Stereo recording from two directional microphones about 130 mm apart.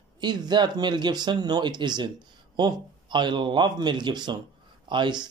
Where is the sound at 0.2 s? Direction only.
35° right (ahead or behind).